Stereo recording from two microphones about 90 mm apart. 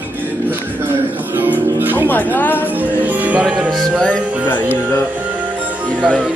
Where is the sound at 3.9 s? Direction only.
10° left (ahead or behind).